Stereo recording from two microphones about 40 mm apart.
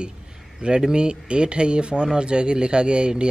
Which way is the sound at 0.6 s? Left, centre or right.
Right.